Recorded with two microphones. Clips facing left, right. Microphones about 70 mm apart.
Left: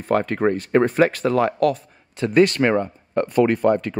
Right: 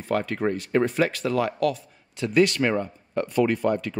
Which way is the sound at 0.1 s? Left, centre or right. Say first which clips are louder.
Left 5 dB; left.